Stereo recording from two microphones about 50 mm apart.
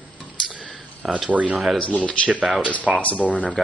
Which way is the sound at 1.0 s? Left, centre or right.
Centre.